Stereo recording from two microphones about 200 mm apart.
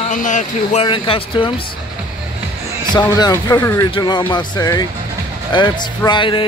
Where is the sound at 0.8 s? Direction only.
25° left (ahead or behind).